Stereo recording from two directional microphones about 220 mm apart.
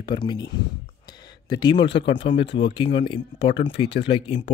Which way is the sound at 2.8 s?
25° left (ahead or behind).